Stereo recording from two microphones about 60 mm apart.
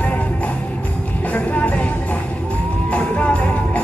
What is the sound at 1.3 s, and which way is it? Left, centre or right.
Music, left.